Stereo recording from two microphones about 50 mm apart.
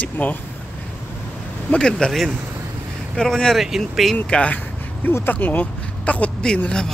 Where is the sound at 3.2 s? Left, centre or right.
Centre.